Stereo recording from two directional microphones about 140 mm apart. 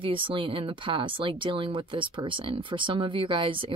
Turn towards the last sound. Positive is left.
turn(degrees=-35)  # may be behind; listen again after turning